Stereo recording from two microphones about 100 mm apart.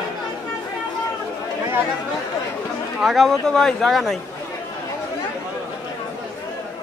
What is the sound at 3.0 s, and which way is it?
Speech, centre (ahead or behind).